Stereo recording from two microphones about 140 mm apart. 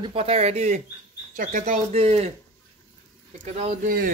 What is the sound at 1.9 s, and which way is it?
Speech, 45° right (ahead or behind).